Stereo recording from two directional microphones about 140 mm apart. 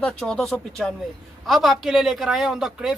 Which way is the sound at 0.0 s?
5° left (ahead or behind).